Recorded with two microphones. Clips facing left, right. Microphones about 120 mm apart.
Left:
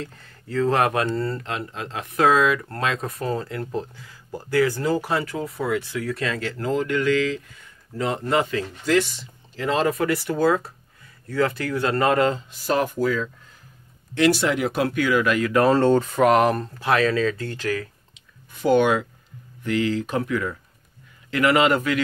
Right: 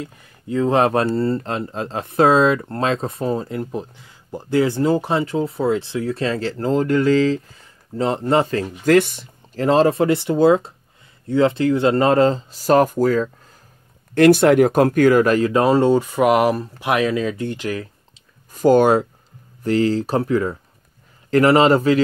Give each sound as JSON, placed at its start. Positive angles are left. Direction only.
{"t": 0.0, "sound": "speech", "side_deg": -10}
{"t": 8.8, "sound": "speech", "side_deg": -55}
{"t": 9.7, "sound": "speech", "side_deg": -30}
{"t": 15.7, "sound": "speech", "side_deg": -10}
{"t": 18.5, "sound": "speech", "side_deg": -40}